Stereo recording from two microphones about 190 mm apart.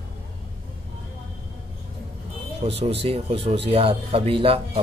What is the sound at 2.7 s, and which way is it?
A man's voice, 30° right (ahead or behind).